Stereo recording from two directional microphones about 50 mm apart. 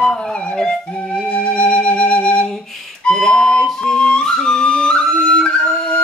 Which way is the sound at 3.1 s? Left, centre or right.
Centre.